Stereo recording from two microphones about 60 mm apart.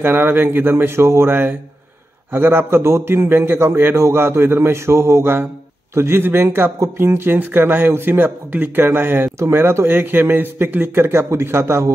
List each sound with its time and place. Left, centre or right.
0.0 s a man's voice: right